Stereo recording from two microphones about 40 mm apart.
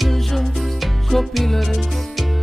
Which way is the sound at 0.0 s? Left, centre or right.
Centre.